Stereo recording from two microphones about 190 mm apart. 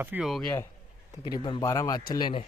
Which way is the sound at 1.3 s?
25° left (ahead or behind).